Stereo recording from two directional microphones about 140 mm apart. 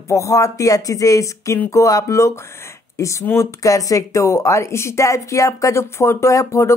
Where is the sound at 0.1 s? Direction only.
20° left (ahead or behind).